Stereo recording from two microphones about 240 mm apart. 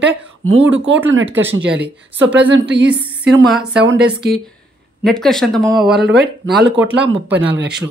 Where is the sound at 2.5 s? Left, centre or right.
Right.